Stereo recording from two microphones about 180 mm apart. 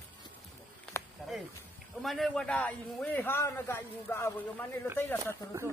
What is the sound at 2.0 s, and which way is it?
A man's voice, centre (ahead or behind).